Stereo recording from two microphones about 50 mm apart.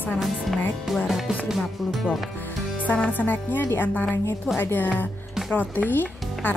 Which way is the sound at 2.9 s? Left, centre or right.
Left.